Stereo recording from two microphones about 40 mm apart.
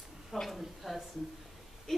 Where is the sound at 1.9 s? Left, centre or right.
Centre.